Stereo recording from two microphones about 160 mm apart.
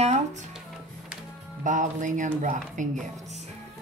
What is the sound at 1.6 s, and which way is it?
Speech, 50° right (ahead or behind).